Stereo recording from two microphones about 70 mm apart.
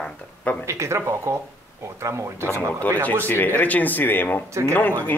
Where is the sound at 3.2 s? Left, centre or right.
Left.